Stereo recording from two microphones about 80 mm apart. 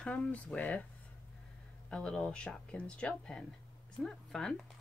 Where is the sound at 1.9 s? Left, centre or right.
Centre.